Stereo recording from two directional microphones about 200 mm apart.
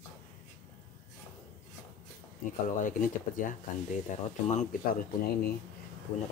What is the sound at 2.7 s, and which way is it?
Speech, 40° left (ahead or behind).